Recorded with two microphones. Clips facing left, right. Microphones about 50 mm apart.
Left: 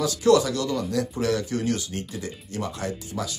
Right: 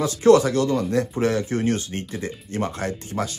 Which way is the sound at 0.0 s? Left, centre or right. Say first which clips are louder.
Right 4 dB; right.